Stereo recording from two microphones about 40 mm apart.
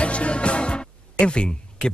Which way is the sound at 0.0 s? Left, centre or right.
Left.